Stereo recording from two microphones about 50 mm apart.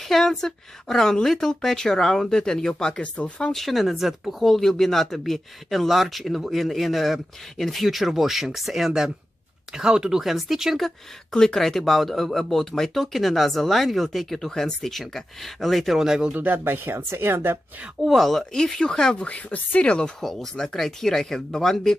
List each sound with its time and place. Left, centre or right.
0.1 s a woman's voice: centre
3.5 s speech: centre
11.3 s speech: centre
16.3 s speech: right
18.0 s speech: centre
18.5 s a woman's voice: centre
19.2 s speech: left
20.2 s a woman's voice: centre